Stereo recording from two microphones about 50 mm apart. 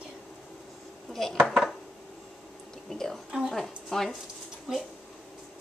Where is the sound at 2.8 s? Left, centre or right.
Centre.